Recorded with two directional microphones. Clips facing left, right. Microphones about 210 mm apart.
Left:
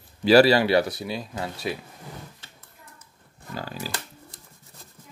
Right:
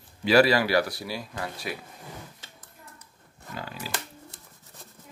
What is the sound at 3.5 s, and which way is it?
Pig, 35° left (ahead or behind).